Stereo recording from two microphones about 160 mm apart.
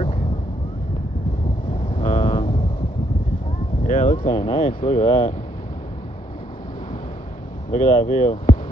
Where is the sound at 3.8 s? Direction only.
55° left (ahead or behind).